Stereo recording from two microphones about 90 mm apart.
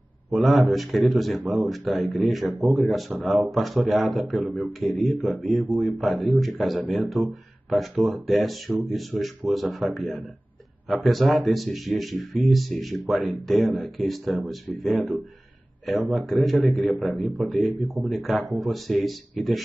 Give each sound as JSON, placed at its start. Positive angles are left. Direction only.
{"t": 0.3, "sound": "speech", "side_deg": 0}
{"t": 2.4, "sound": "speech", "side_deg": -15}
{"t": 2.8, "sound": "speech", "side_deg": 0}